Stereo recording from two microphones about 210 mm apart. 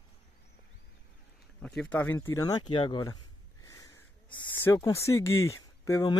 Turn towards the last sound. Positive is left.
turn(degrees=15)  # may be behind; listen again after turning